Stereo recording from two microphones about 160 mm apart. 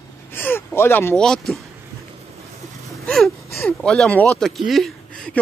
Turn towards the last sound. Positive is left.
turn(degrees=5)  # may be behind; listen again after turning